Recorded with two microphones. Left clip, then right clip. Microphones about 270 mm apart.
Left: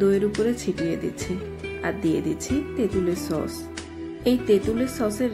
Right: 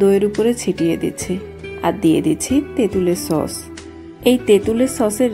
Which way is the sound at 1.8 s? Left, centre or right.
Centre.